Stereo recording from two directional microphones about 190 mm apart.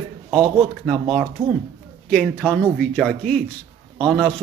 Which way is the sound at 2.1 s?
5° left (ahead or behind).